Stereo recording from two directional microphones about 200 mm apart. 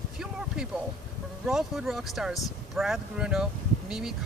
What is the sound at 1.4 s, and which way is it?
Speech, centre (ahead or behind).